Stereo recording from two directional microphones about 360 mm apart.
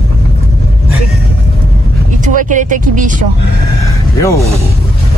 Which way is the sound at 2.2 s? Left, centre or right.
Right.